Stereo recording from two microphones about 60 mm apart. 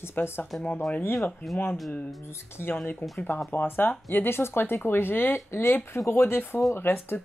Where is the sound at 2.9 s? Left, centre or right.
Left.